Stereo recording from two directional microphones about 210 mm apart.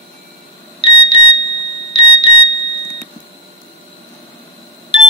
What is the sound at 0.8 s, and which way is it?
Alarm, 25° left (ahead or behind).